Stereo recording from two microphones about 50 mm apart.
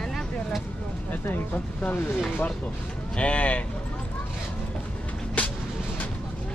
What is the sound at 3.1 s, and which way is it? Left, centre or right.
Speech, left.